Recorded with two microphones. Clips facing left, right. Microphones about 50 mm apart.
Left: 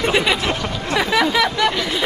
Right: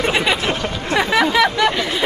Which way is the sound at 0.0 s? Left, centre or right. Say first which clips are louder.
Even; centre.